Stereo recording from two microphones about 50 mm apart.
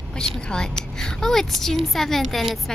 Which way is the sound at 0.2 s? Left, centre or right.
Centre.